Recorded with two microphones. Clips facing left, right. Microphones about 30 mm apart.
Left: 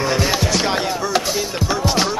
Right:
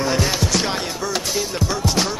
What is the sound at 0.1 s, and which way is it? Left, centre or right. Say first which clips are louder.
Music: left 2 dB; centre.